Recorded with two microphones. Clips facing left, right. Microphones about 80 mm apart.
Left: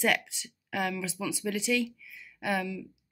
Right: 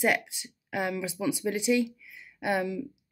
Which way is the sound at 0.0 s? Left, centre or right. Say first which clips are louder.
Right 2 dB; centre.